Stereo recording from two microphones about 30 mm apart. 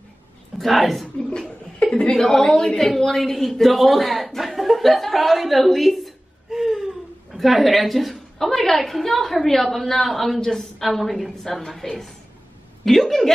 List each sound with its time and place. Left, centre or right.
0.6 s a woman's voice: centre
1.8 s chuckle: left
2.3 s a woman's voice: centre
6.5 s gasp: centre
7.3 s a woman's voice: centre
10.4 s a woman's voice: centre